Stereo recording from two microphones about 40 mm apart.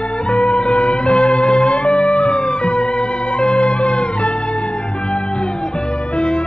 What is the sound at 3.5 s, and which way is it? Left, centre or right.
Music, left.